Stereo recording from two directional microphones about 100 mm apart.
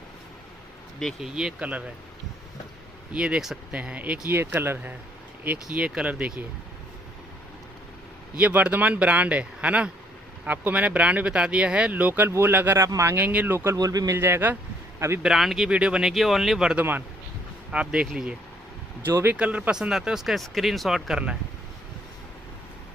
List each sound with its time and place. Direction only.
1.2 s speech: 5° right (ahead or behind)
3.1 s speech: 10° right (ahead or behind)
8.4 s speech: 15° right (ahead or behind)
13.6 s speech: 30° right (ahead or behind)
14.2 s speech: 20° right (ahead or behind)
15.2 s speech: centre (ahead or behind)
19.0 s speech: 20° right (ahead or behind)